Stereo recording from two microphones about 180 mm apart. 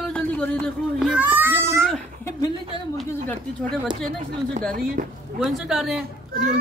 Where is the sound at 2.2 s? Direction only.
20° left (ahead or behind).